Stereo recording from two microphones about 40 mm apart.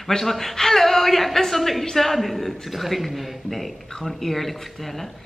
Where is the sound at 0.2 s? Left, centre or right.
Centre.